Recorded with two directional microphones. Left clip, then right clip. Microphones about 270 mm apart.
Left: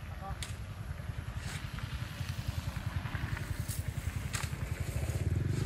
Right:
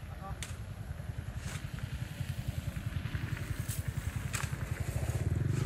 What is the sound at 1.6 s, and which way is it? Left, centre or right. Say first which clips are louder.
Vehicle: left 2 dB; centre.